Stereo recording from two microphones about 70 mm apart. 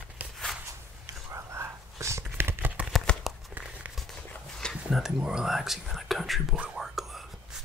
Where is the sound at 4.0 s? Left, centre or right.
Centre.